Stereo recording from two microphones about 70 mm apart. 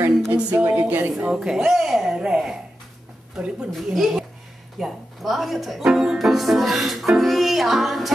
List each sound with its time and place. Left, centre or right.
0.3 s a woman's voice: right
1.2 s speech: centre
3.7 s speech: centre